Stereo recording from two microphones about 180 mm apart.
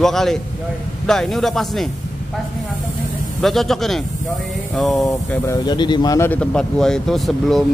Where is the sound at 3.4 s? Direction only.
Centre (ahead or behind).